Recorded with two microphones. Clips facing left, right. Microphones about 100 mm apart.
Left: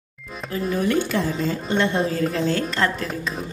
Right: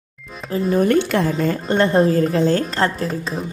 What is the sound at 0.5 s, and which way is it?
Speech, 35° right (ahead or behind).